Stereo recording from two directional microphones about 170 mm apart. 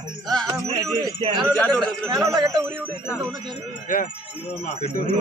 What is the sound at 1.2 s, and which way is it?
Speech, 30° right (ahead or behind).